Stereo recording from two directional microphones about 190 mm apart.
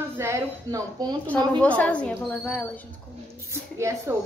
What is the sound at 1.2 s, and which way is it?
A woman's voice, 10° left (ahead or behind).